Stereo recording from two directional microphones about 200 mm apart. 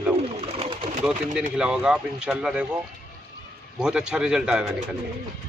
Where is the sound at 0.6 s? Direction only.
30° right (ahead or behind).